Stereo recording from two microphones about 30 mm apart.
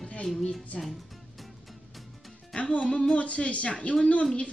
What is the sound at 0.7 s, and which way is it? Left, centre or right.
Speech, left.